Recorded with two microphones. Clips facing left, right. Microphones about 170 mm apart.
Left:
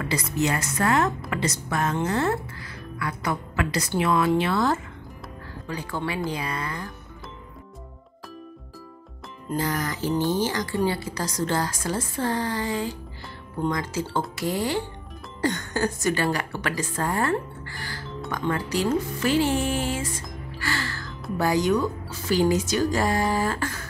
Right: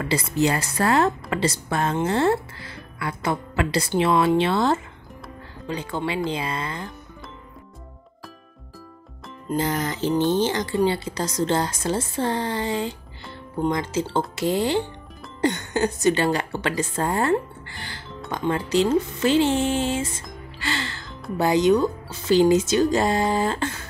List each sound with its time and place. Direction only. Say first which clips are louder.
0.1 s a woman's voice: right 4 dB; 30° right (ahead or behind)
9.5 s a woman's voice: right 3 dB; 25° right (ahead or behind)